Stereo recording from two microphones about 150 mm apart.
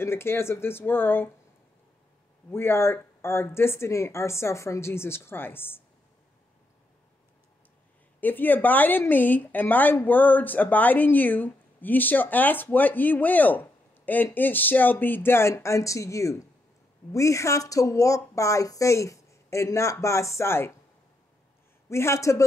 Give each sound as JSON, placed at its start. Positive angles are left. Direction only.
{"t": 0.0, "sound": "speech", "side_deg": 15}
{"t": 2.5, "sound": "speech", "side_deg": 15}
{"t": 8.2, "sound": "a woman's voice", "side_deg": 10}
{"t": 21.8, "sound": "a woman's voice", "side_deg": 20}